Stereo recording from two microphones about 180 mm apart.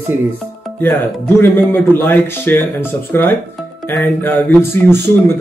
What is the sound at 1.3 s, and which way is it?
A man's voice, 10° left (ahead or behind).